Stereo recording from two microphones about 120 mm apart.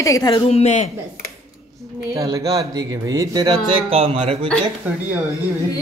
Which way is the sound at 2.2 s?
30° right (ahead or behind).